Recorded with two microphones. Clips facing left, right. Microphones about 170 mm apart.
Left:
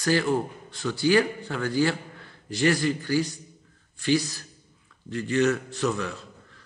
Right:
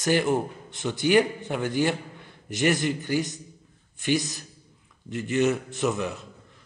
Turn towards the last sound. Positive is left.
turn(degrees=-20)  # may be behind; listen again after turning